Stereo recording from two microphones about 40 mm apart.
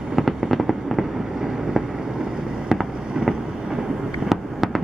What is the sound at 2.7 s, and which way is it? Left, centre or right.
Fireworks, centre.